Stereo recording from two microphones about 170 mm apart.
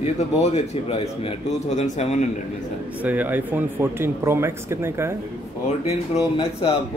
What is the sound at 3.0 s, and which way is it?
Speech, 10° right (ahead or behind).